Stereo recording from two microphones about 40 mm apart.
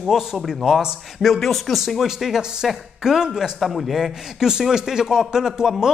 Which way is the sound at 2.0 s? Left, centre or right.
Centre.